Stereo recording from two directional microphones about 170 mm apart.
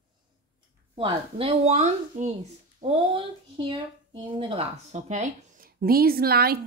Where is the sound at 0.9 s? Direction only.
30° right (ahead or behind).